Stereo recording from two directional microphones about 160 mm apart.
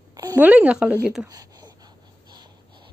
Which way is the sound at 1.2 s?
20° right (ahead or behind).